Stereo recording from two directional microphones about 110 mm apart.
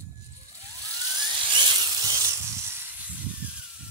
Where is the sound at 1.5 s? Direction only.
45° right (ahead or behind); by 2.9 s 25° right (ahead or behind).